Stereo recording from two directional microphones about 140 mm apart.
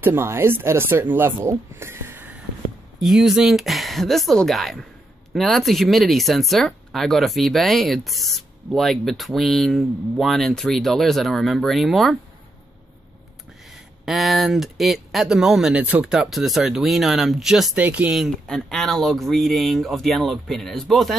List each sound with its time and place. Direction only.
0.0 s speech: 15° right (ahead or behind)
3.0 s speech: 5° right (ahead or behind)
14.0 s speech: centre (ahead or behind)